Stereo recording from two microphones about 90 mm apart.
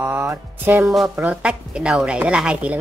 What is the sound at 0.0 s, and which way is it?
Music, 25° right (ahead or behind).